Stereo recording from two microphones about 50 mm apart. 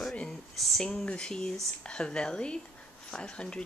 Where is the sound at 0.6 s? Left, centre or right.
Centre.